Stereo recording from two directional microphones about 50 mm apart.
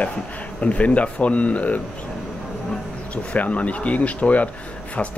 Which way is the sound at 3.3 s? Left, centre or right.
Left.